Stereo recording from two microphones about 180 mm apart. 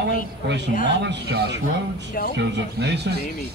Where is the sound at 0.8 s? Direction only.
75° right (ahead or behind).